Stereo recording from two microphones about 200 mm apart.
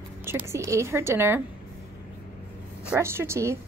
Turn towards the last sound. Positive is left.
turn(degrees=-15)  # may be behind; listen again after turning